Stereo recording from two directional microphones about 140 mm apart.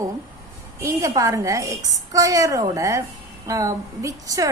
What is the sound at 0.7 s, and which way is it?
A woman's voice, 20° right (ahead or behind).